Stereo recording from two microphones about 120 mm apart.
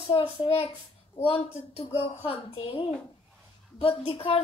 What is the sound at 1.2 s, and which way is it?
Speech, 70° left (ahead or behind).